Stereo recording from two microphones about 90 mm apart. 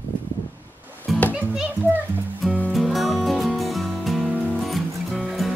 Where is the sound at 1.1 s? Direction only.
Centre (ahead or behind).